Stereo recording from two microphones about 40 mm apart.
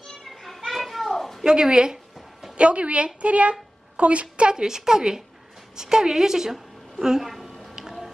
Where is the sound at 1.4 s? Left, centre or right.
Centre.